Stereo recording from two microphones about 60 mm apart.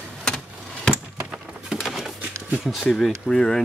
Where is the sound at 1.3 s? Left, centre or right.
Centre.